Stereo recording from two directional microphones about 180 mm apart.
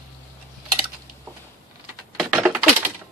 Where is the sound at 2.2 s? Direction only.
5° right (ahead or behind).